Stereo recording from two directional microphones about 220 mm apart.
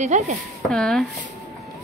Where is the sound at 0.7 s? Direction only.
5° left (ahead or behind).